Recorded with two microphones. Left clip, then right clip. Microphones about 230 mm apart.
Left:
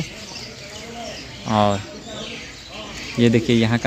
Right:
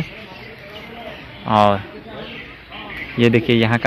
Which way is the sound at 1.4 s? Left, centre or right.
Centre.